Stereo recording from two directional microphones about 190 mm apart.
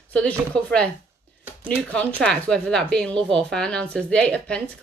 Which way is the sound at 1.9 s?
5° left (ahead or behind).